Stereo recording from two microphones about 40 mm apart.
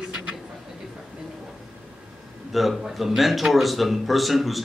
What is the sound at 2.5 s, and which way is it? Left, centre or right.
Speech, centre.